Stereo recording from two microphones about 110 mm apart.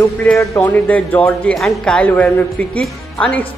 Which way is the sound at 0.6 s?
15° left (ahead or behind).